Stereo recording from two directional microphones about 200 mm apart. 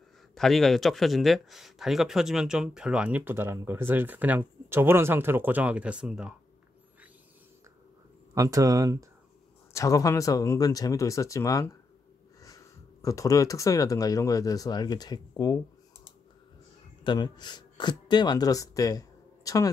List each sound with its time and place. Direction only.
0.3 s speech: centre (ahead or behind)
8.4 s speech: 15° right (ahead or behind)
9.7 s speech: 15° left (ahead or behind)
17.0 s speech: 20° left (ahead or behind)